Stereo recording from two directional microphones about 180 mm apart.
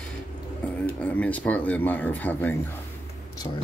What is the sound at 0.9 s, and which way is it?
Speech, 10° left (ahead or behind).